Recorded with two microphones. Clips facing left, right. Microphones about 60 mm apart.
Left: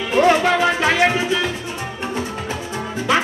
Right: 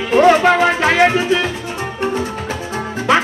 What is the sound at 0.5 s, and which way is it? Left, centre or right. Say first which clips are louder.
Music: right 4 dB; right.